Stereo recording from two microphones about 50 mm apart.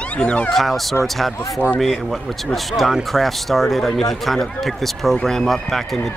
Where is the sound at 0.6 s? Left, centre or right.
Centre.